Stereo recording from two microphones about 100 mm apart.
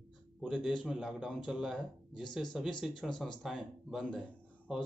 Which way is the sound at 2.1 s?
50° left (ahead or behind).